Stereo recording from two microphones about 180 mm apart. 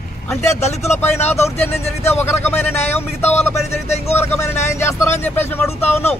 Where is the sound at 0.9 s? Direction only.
10° left (ahead or behind).